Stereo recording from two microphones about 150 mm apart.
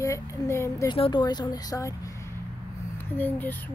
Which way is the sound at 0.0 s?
20° left (ahead or behind).